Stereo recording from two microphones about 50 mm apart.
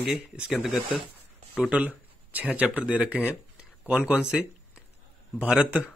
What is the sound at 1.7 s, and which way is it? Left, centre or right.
Speech, right.